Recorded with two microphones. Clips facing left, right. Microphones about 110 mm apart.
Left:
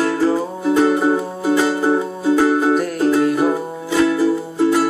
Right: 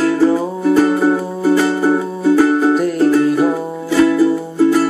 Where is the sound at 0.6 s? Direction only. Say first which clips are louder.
Right 2 dB; 20° left (ahead or behind); by 3.5 s centre (ahead or behind).